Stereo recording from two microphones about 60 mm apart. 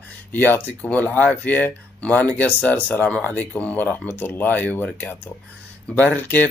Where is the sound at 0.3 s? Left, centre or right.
Left.